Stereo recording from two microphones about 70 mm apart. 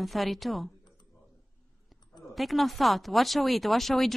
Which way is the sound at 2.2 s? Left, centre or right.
Centre.